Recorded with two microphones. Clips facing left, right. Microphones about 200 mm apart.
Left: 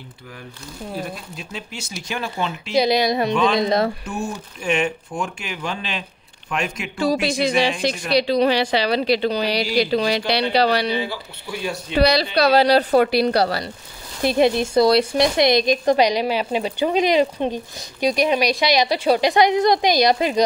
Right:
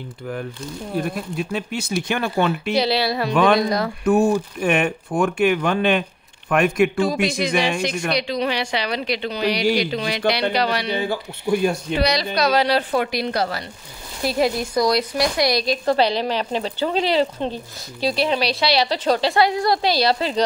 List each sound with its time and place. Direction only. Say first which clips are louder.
1.0 s speech: right 7 dB; 55° right (ahead or behind)
2.7 s speech: left 2 dB; 15° left (ahead or behind)
4.0 s speech: right 11 dB; 60° right (ahead or behind)
7.0 s a woman's voice: left 1 dB; 35° left (ahead or behind)
10.9 s speech: right 1 dB; 50° right (ahead or behind)
12.0 s a woman's voice: left 5 dB; 35° left (ahead or behind)
14.2 s speech: left 3 dB; 25° left (ahead or behind)